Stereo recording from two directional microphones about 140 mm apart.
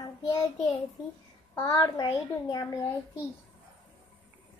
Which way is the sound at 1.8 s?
30° left (ahead or behind).